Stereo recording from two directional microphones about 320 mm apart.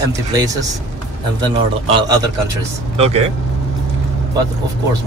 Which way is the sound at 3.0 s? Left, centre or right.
Centre.